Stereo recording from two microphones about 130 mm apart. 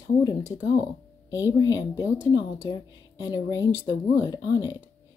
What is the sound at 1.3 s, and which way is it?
Speech, 25° left (ahead or behind).